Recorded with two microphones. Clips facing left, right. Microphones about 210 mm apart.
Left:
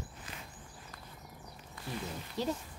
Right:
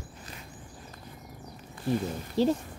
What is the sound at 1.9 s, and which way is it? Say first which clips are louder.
Speech: right 11 dB; 35° right (ahead or behind).